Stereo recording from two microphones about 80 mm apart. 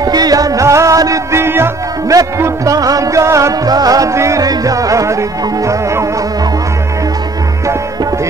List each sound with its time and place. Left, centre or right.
0.0 s music: right